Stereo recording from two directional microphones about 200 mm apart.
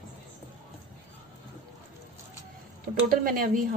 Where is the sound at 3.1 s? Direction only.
45° right (ahead or behind).